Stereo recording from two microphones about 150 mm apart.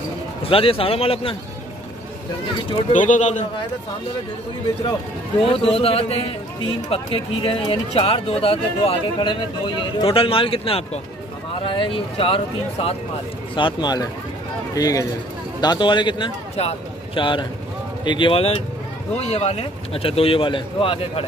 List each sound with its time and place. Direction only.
0.5 s speech: 40° left (ahead or behind)
2.9 s a man's voice: 55° left (ahead or behind)
5.4 s speech: 40° left (ahead or behind)